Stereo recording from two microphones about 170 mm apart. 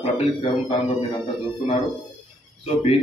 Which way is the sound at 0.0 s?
35° left (ahead or behind).